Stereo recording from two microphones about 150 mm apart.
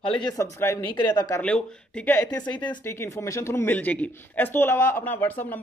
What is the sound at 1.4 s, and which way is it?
Speech, 5° left (ahead or behind).